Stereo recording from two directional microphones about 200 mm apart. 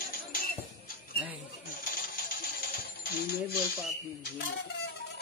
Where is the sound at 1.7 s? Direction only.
45° left (ahead or behind).